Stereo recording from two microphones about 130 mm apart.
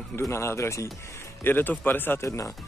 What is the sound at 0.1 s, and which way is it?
Speech, 20° left (ahead or behind).